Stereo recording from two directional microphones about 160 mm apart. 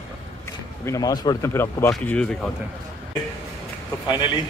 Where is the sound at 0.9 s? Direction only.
25° left (ahead or behind); by 2.4 s 5° left (ahead or behind).